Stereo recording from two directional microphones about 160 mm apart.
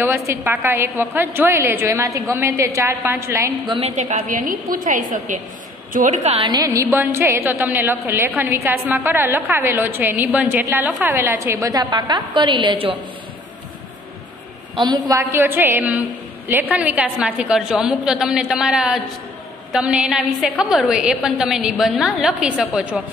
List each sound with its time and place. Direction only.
0.0 s a woman's voice: 15° right (ahead or behind)
3.6 s a woman's voice: 30° right (ahead or behind)
3.9 s a woman's voice: 45° right (ahead or behind)
6.3 s a woman's voice: 25° right (ahead or behind)
14.8 s a woman's voice: 30° right (ahead or behind)
15.1 s a woman's voice: 15° right (ahead or behind)